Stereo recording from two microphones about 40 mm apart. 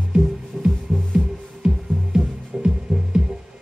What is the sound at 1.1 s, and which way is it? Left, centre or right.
Music, centre.